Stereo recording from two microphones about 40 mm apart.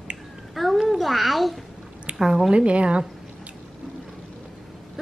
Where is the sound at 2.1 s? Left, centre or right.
Right.